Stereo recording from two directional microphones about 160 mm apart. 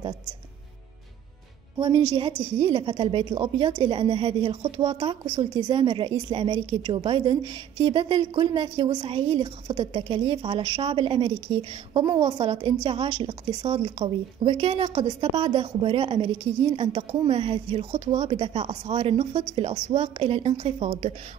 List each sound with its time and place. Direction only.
2.6 s a woman's voice: 35° right (ahead or behind)